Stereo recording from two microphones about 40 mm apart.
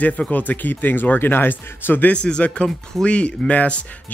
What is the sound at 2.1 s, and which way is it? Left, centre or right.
Speech, left.